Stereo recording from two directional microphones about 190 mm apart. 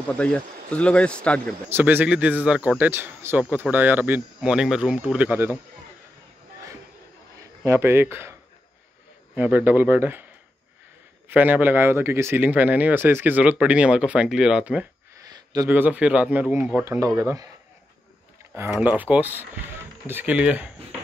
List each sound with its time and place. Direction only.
0.1 s speech: 5° left (ahead or behind)
1.7 s speech: 10° right (ahead or behind)
7.6 s speech: 15° right (ahead or behind)
11.2 s speech: 10° right (ahead or behind)
15.1 s speech: 20° right (ahead or behind)
18.5 s speech: 10° right (ahead or behind)